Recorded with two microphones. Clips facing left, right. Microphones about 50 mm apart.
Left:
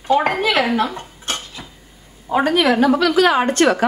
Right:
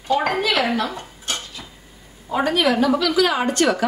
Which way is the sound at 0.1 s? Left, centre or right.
Left.